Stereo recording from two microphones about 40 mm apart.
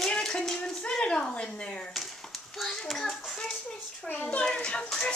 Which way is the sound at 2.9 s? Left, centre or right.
Centre.